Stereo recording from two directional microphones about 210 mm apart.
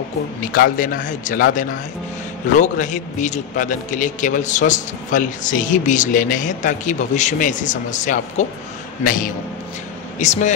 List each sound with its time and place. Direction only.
0.5 s a man's voice: 40° left (ahead or behind)